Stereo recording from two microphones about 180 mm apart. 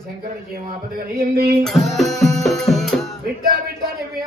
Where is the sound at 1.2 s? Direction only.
60° right (ahead or behind).